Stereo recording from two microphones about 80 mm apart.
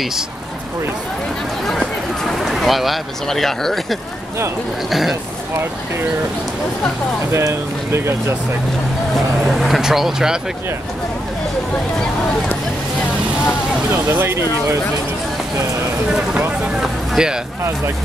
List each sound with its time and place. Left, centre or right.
1.7 s speech: centre
7.3 s speech: right
9.1 s speech: centre
14.0 s speech: right
16.8 s speech: centre